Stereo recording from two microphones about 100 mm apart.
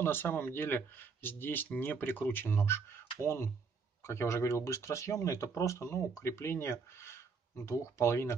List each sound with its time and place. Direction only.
0.0 s speech: 20° left (ahead or behind)